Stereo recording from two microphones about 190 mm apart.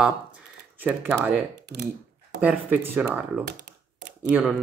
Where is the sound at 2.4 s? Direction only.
10° right (ahead or behind).